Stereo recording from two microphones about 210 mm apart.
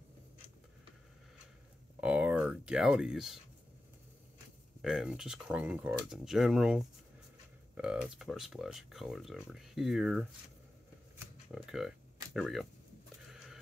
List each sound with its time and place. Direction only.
2.0 s a sound: 5° right (ahead or behind)
4.8 s speech: centre (ahead or behind)
11.5 s speech: centre (ahead or behind)